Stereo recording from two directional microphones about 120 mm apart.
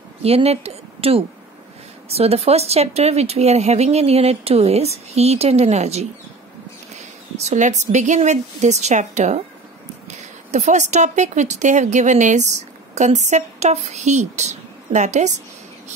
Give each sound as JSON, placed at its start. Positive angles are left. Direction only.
{"t": 0.2, "sound": "a woman's voice", "side_deg": -55}
{"t": 7.3, "sound": "a woman's voice", "side_deg": -80}